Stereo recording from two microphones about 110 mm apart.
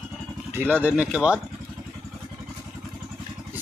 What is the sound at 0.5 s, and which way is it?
Speech, 20° right (ahead or behind).